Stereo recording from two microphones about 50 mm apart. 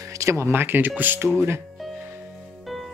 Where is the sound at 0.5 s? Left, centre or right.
Right.